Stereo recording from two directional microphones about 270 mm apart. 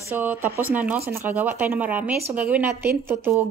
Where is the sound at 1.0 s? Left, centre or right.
Right.